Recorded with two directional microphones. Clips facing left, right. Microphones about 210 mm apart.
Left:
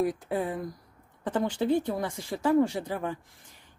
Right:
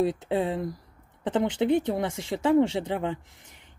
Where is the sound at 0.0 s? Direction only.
25° right (ahead or behind).